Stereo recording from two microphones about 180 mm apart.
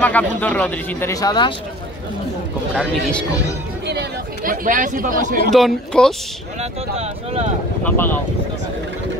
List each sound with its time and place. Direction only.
0.0 s speech: 10° left (ahead or behind)
2.7 s speech: 5° left (ahead or behind)
3.8 s speech: 70° right (ahead or behind)
4.4 s speech: 50° right (ahead or behind)
5.5 s speech: centre (ahead or behind)
6.6 s speech: 35° right (ahead or behind)
7.8 s speech: 10° left (ahead or behind)